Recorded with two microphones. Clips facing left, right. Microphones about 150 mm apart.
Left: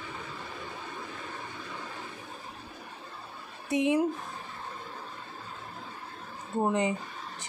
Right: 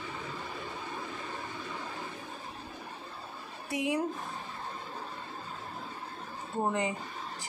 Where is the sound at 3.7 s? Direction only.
20° left (ahead or behind).